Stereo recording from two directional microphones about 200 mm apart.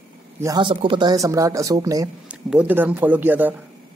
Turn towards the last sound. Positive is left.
turn(degrees=-10)  # may be behind; listen again after turning